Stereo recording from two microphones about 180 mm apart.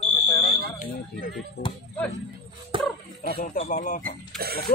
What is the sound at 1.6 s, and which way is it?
Speech, 60° left (ahead or behind).